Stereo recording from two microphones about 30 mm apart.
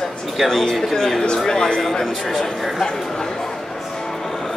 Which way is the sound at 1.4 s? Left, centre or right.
Centre.